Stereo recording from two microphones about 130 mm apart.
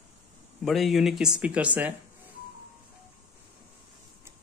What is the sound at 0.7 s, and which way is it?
Speech, centre (ahead or behind).